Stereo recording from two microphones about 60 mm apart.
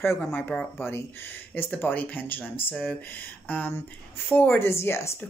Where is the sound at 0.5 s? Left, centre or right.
Left.